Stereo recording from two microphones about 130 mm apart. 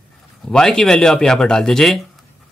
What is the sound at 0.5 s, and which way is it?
Speech, 5° left (ahead or behind).